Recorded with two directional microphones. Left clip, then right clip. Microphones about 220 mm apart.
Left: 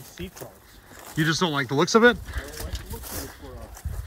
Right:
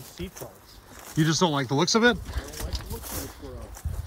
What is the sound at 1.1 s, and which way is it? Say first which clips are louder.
Speech: even; 15° right (ahead or behind).